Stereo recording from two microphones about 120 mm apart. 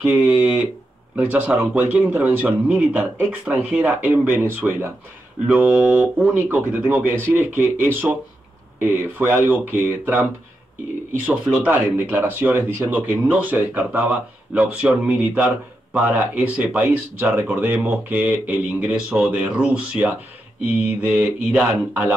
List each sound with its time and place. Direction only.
0.0 s speech: 10° right (ahead or behind)
11.2 s speech: 10° right (ahead or behind)